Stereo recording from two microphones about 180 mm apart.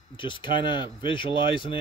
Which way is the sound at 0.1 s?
25° left (ahead or behind).